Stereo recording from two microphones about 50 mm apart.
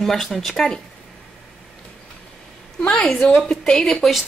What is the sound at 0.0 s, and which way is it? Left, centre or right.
Speech, centre.